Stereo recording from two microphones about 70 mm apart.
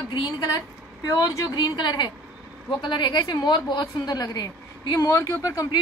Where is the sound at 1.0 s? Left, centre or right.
Left.